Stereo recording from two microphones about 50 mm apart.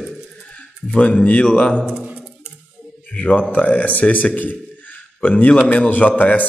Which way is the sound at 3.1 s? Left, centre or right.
Left.